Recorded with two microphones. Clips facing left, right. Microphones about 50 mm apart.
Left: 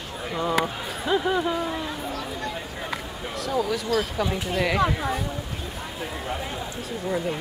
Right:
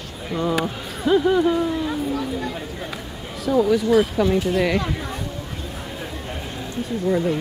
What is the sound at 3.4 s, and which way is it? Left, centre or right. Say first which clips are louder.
Speech: right 8 dB; centre.